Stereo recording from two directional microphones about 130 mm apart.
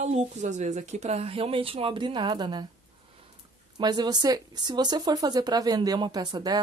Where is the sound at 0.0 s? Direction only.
65° right (ahead or behind); by 2.6 s 35° right (ahead or behind).